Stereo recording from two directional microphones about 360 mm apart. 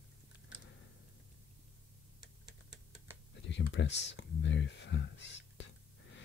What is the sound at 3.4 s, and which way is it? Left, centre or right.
Speech, left.